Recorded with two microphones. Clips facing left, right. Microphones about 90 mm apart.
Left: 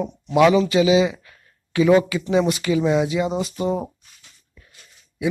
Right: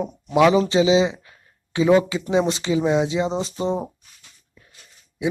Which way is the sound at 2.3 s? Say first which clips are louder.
Left 1 dB; 25° right (ahead or behind).